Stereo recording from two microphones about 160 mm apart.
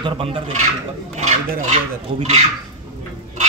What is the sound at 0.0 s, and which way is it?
Speech, 35° right (ahead or behind).